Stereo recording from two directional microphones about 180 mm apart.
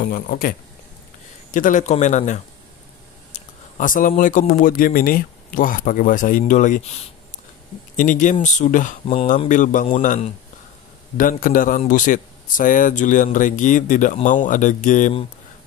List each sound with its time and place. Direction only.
0.0 s a man's voice: 50° left (ahead or behind)
7.9 s a man's voice: 45° left (ahead or behind)
9.0 s speech: 30° left (ahead or behind)
9.5 s a man's voice: 45° left (ahead or behind)